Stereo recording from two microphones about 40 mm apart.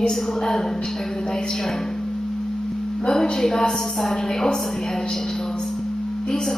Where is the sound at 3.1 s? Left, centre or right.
Centre.